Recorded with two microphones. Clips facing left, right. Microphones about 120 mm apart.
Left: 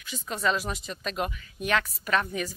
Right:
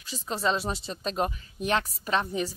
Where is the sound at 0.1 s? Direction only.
30° right (ahead or behind).